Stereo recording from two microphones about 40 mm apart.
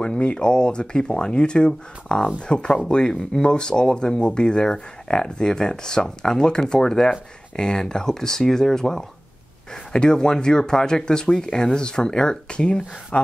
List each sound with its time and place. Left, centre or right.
0.0 s speech: left